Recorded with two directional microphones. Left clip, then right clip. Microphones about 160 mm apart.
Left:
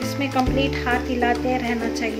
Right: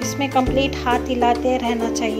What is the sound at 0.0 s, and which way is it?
Speech, 25° right (ahead or behind).